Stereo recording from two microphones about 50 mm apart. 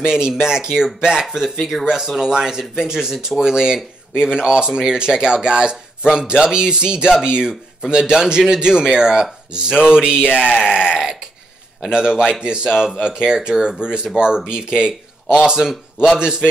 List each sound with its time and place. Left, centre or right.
0.0 s a man's voice: centre
1.9 s a man's voice: centre